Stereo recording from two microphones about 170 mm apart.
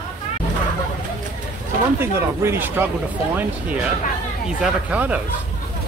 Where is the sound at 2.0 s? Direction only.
15° right (ahead or behind).